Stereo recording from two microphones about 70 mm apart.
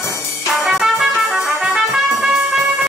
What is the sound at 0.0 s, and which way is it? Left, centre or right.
Brass instrument, left.